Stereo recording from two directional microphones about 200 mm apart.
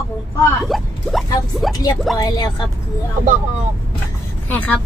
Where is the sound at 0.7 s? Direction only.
Centre (ahead or behind).